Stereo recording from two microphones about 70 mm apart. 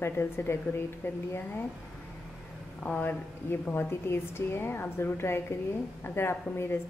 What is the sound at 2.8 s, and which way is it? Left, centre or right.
A woman's voice, left.